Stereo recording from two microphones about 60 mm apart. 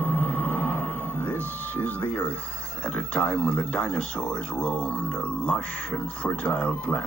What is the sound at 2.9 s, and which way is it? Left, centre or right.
Speech, left.